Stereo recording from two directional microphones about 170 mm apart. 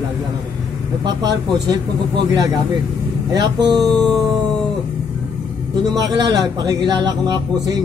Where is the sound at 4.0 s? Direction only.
Centre (ahead or behind).